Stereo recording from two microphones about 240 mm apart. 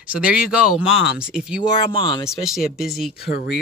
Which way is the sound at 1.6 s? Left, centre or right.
Centre.